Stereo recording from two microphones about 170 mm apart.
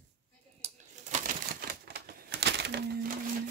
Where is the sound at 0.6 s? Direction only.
45° right (ahead or behind); by 2.8 s 90° right.